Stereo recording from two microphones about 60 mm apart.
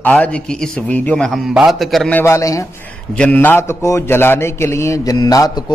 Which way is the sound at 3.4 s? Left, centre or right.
Left.